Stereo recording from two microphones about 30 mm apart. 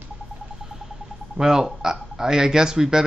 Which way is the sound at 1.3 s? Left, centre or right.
Centre.